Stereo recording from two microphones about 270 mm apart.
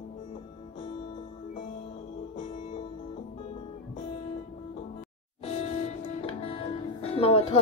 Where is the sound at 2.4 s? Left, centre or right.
Left.